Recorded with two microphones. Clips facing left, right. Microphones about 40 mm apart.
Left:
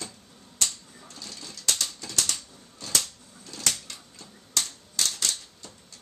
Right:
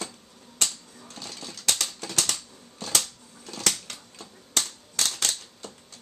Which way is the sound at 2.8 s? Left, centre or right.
Right.